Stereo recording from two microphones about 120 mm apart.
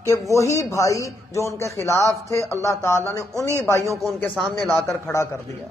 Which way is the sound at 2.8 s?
25° left (ahead or behind).